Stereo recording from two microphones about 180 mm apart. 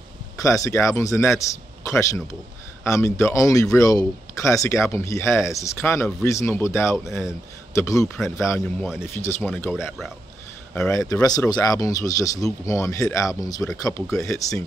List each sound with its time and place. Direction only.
0.4 s a man's voice: 15° left (ahead or behind)
9.8 s speech: centre (ahead or behind)
10.9 s speech: 15° left (ahead or behind)